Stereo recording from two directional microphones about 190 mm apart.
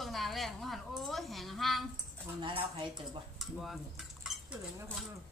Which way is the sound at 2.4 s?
25° right (ahead or behind).